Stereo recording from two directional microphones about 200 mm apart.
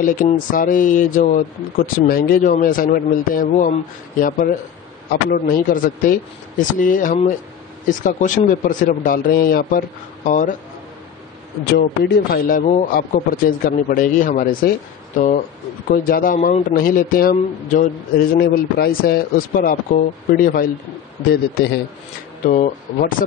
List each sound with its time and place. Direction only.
0.5 s a man's voice: 40° left (ahead or behind)
11.6 s a man's voice: 50° left (ahead or behind)
22.4 s a man's voice: 40° left (ahead or behind)